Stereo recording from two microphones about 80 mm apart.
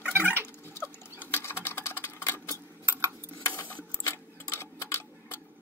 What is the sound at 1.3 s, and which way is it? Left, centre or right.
Sewing machine, left.